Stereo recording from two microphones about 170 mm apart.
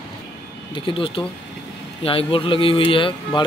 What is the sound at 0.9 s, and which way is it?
A man's voice, 30° left (ahead or behind).